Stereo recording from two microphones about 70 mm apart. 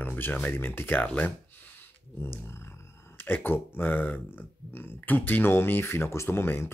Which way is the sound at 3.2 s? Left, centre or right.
Left.